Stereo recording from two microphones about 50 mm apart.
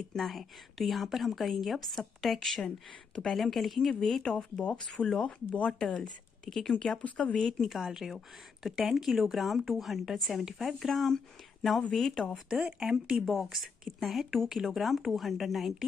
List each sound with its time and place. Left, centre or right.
0.1 s a woman's voice: centre
4.6 s speech: centre
6.4 s a woman's voice: centre
12.6 s speech: centre
13.1 s a woman's voice: centre